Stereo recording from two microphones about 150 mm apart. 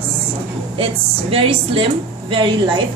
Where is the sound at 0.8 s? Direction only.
40° right (ahead or behind).